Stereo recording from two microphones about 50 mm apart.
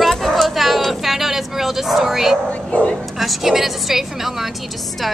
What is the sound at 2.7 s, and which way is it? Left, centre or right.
Speech, left.